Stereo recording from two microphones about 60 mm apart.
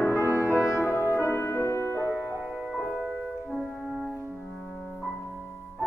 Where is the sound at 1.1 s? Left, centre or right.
Left.